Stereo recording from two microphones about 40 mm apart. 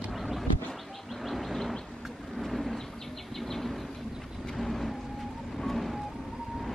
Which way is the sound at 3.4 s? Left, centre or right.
Centre.